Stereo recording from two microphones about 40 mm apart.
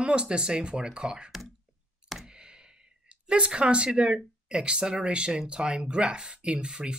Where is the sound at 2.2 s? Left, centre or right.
Right.